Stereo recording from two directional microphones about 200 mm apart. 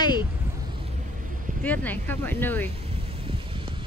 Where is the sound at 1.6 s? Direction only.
10° left (ahead or behind).